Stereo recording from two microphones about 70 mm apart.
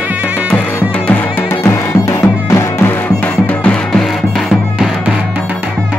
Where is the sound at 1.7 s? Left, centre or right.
Left.